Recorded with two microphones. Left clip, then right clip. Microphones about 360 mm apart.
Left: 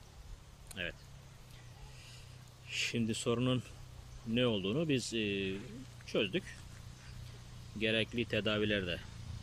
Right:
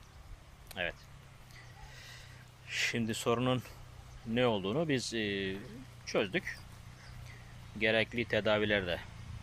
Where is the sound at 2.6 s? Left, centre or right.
Centre.